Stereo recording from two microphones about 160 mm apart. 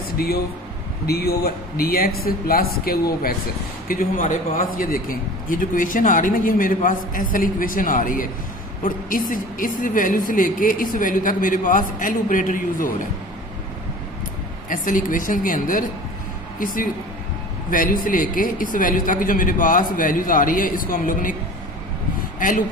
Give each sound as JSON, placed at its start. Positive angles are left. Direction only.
{"t": 1.0, "sound": "speech", "side_deg": 75}
{"t": 14.7, "sound": "speech", "side_deg": 55}
{"t": 18.0, "sound": "speech", "side_deg": 60}